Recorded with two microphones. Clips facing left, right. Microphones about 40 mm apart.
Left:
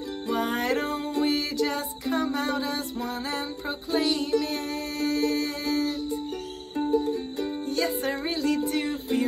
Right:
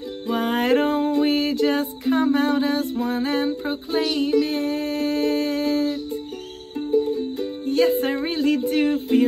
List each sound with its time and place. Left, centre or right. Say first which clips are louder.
0.3 s music: right 6 dB; right
4.0 s humming: right 6 dB; right
7.6 s music: right 10 dB; right
8.4 s a sound: right 7 dB; right